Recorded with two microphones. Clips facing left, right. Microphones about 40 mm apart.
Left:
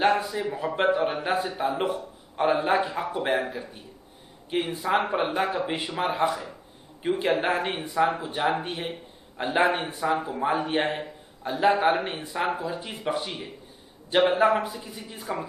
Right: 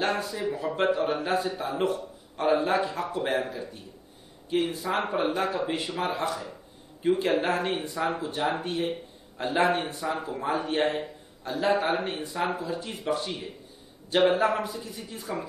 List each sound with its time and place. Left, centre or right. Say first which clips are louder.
0.1 s a man's voice: left 3 dB; centre